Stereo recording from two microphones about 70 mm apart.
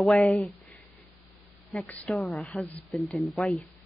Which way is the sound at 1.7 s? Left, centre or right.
Centre.